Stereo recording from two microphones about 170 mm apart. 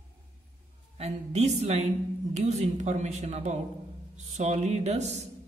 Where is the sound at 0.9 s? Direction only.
40° right (ahead or behind).